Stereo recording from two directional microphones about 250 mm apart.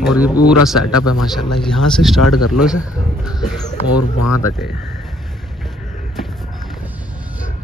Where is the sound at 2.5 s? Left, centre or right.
Centre.